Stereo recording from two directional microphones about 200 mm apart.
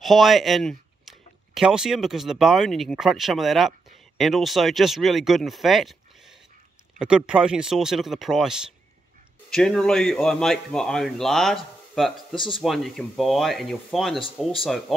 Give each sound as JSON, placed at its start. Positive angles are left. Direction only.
{"t": 0.0, "sound": "speech", "side_deg": 0}
{"t": 7.0, "sound": "speech", "side_deg": -5}
{"t": 12.4, "sound": "speech", "side_deg": 25}
{"t": 12.6, "sound": "speech", "side_deg": 0}